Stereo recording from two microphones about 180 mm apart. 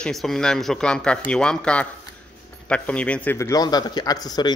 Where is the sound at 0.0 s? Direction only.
Centre (ahead or behind).